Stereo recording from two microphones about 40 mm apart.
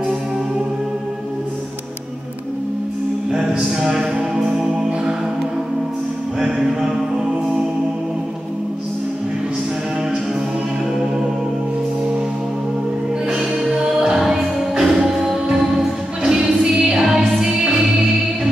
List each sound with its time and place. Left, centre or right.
3.3 s music: centre
13.8 s music: centre
16.2 s music: centre
17.0 s music: centre
17.4 s music: centre